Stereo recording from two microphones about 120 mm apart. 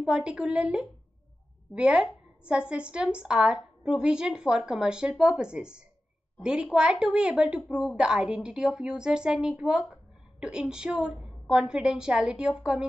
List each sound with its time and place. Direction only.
0.0 s a woman's voice: 10° right (ahead or behind)